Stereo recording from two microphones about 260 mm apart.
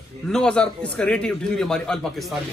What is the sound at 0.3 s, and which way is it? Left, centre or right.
A man's voice, centre.